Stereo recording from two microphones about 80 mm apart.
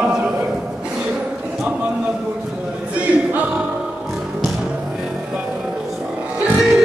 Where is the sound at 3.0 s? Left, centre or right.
Centre.